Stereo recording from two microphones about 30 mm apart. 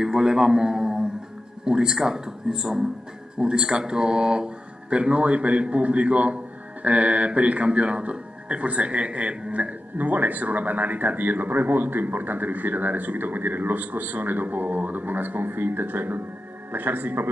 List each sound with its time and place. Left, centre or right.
0.0 s a man's voice: right
9.5 s speech: right